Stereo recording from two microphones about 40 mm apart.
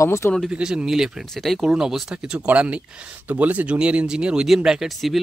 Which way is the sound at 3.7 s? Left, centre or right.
Right.